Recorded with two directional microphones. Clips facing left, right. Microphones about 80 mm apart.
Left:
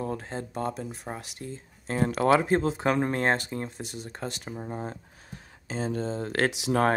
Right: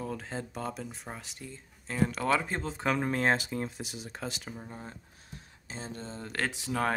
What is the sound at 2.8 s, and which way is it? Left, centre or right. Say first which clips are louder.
Speech: left 3 dB; left.